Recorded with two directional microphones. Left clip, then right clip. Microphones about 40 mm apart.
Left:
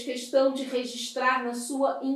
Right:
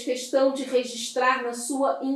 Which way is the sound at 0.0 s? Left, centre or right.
Right.